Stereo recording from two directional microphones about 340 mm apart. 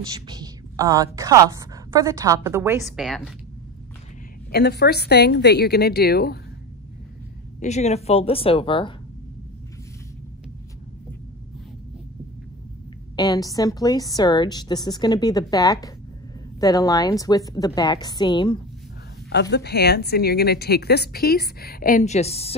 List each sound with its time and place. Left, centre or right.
0.3 s a woman's voice: centre
4.5 s a woman's voice: left
7.6 s a woman's voice: centre
13.1 s a woman's voice: centre
19.5 s a woman's voice: left